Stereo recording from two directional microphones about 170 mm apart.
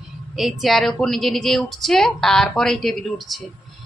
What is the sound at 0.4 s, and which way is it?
A woman's voice, centre (ahead or behind).